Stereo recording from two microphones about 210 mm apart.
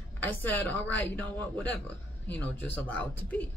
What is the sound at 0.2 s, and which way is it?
A woman's voice, 10° left (ahead or behind).